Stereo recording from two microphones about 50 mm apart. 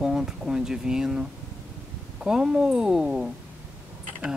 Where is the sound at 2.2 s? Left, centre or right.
Centre.